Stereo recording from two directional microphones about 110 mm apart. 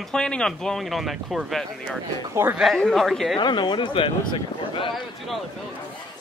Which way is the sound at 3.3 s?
45° left (ahead or behind).